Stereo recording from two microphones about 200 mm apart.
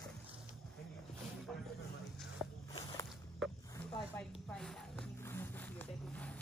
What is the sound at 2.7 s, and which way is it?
Walk, 25° left (ahead or behind).